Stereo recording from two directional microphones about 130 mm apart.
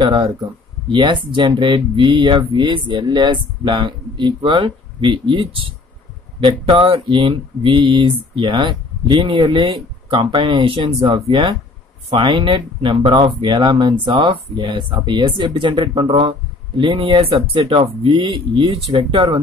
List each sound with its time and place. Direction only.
0.0 s speech: 35° right (ahead or behind)